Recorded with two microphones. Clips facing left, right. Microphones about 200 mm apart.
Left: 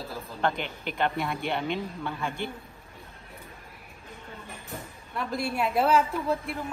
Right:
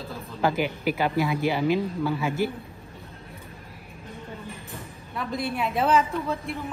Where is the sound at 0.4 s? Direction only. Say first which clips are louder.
Right 5 dB; 5° right (ahead or behind).